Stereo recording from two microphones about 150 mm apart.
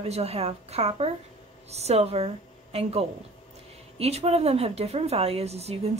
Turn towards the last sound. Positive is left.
turn(degrees=-45)  # may be behind; listen again after turning